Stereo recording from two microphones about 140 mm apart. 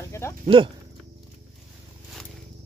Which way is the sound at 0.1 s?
20° left (ahead or behind).